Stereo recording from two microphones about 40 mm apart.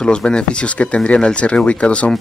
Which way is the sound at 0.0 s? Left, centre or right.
Left.